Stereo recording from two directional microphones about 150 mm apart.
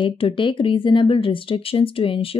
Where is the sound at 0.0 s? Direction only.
35° left (ahead or behind).